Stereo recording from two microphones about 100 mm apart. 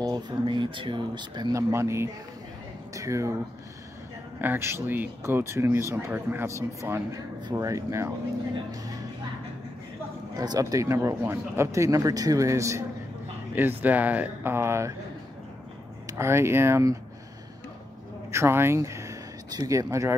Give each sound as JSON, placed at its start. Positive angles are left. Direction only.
{"t": 0.0, "sound": "speech", "side_deg": -45}
{"t": 1.5, "sound": "speech", "side_deg": -30}
{"t": 4.4, "sound": "speech", "side_deg": -25}
{"t": 10.3, "sound": "speech", "side_deg": -40}
{"t": 13.6, "sound": "speech", "side_deg": -20}
{"t": 16.1, "sound": "speech", "side_deg": -25}
{"t": 18.3, "sound": "speech", "side_deg": -25}